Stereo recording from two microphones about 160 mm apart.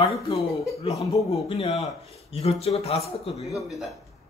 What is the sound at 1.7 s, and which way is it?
Speech, centre (ahead or behind).